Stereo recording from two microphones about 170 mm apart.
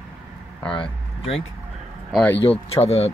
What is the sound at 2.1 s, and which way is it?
Speech, 10° left (ahead or behind).